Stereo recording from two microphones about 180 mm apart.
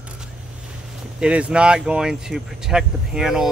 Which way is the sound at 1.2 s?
5° right (ahead or behind).